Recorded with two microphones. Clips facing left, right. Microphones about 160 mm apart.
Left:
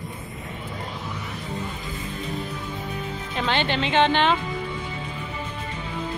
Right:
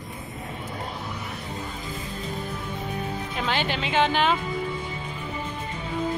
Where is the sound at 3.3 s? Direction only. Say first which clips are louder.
Left 4 dB; 5° right (ahead or behind).